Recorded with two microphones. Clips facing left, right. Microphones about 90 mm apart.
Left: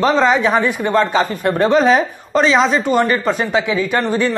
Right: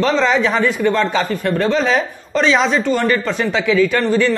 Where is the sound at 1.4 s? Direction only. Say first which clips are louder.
Left 5 dB; 15° left (ahead or behind).